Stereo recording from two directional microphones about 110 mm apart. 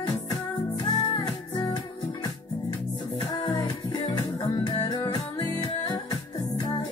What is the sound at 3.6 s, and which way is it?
Music, 40° left (ahead or behind).